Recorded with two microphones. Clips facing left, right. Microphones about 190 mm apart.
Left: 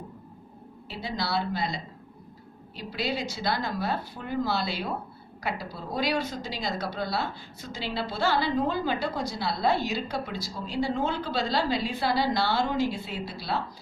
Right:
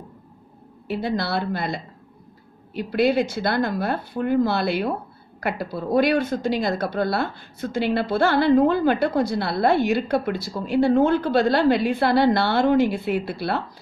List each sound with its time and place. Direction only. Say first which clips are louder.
0.8 s a woman's voice: right 8 dB; 55° right (ahead or behind)